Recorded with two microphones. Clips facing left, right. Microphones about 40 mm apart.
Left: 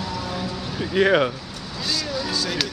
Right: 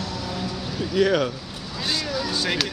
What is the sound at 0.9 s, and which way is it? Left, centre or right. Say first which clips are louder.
Speech: left 2 dB; left.